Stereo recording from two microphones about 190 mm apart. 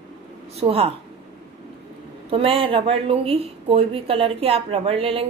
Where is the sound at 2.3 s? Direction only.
30° right (ahead or behind).